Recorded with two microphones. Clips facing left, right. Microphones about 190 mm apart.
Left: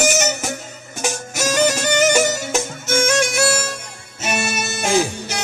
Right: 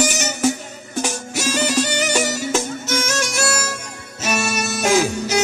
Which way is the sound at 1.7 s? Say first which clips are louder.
Left 3 dB; 45° left (ahead or behind).